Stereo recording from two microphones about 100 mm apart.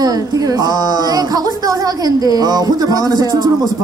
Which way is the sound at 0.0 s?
40° right (ahead or behind).